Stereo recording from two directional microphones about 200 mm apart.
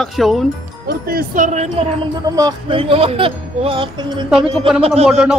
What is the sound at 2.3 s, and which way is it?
Speech, 20° right (ahead or behind).